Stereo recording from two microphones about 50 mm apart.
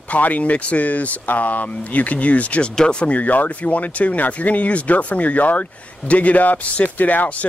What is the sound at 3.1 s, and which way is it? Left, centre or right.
Speech, left.